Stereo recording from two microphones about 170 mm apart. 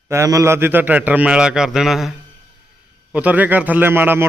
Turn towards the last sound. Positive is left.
turn(degrees=-15)  # may be behind; listen again after turning